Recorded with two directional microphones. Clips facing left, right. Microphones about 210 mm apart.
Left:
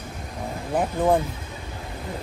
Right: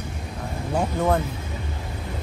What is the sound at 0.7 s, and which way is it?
Speech, 15° left (ahead or behind).